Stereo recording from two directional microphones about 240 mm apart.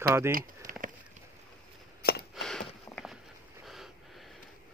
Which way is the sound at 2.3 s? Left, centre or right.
Centre.